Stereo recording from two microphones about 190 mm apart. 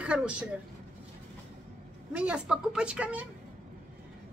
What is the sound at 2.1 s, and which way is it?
A woman's voice, 5° right (ahead or behind).